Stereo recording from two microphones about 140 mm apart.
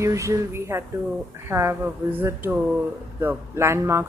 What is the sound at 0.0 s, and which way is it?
A man's voice, 20° right (ahead or behind).